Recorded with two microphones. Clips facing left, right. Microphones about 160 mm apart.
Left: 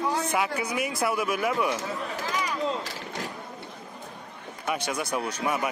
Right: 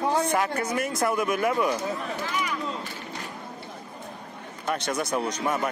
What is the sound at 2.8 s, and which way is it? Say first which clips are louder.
Vehicle: left 1 dB; 90° left.